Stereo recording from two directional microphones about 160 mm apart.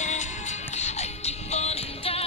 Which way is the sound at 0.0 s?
50° left (ahead or behind).